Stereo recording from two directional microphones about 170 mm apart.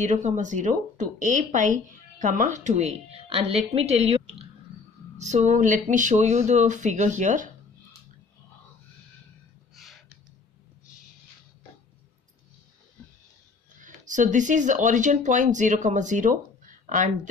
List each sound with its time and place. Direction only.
0.0 s speech: 45° right (ahead or behind)
9.8 s a sound: centre (ahead or behind)
13.7 s speech: 50° right (ahead or behind)